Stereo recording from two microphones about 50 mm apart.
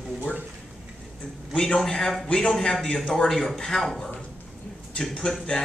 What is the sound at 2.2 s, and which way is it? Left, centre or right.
Speech, centre.